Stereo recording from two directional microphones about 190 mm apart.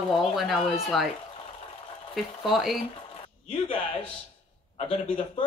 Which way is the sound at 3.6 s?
30° left (ahead or behind).